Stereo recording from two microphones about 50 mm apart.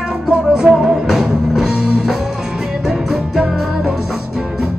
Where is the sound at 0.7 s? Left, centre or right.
Right.